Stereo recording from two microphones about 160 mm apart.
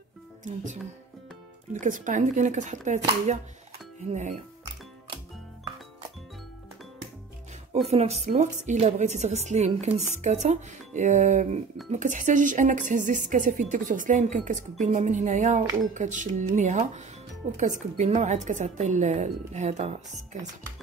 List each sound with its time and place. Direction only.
0.4 s a woman's voice: 50° right (ahead or behind)
4.1 s a woman's voice: 50° right (ahead or behind)
7.9 s a woman's voice: 40° right (ahead or behind)